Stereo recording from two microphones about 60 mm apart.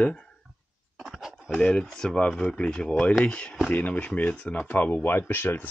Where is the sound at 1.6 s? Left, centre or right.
Centre.